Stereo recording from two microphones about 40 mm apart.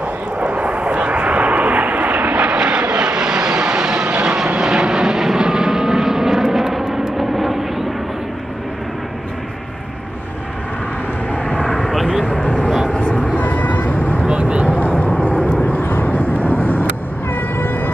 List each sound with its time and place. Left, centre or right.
0.0 s vehicle: right
2.4 s vehicle: right; by 7.9 s centre
11.3 s vehicle: left
11.8 s vehicle: centre
12.9 s vehicle: left
13.4 s vehicle: left
14.2 s vehicle: right
14.7 s vehicle: left